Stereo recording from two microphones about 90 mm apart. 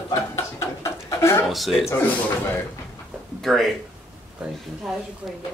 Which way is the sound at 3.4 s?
Centre (ahead or behind).